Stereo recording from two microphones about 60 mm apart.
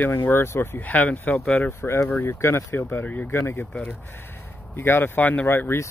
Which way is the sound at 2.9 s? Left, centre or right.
Left.